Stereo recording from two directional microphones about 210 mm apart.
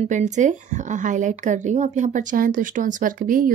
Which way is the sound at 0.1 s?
35° right (ahead or behind).